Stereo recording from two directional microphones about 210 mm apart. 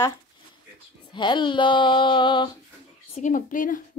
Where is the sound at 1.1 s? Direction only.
20° left (ahead or behind).